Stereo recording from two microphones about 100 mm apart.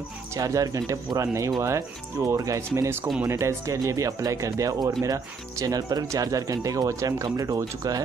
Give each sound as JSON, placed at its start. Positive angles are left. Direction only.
{"t": 0.4, "sound": "speech", "side_deg": -35}